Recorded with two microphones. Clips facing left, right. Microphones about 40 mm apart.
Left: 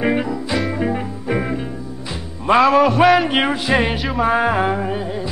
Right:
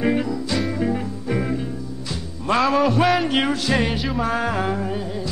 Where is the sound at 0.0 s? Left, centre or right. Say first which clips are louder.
Left 2 dB; left.